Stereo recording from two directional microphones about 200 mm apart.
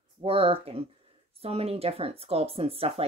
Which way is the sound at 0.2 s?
25° right (ahead or behind).